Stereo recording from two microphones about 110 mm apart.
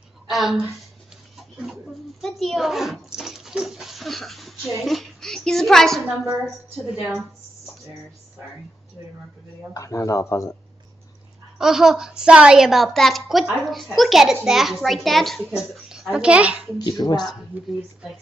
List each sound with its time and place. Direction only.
0.3 s a woman's voice: centre (ahead or behind)
2.2 s a sound: centre (ahead or behind)
7.0 s a woman's voice: 5° right (ahead or behind)
9.8 s speech: 30° left (ahead or behind)
11.5 s a woman's voice: 5° right (ahead or behind)
16.7 s speech: 35° left (ahead or behind)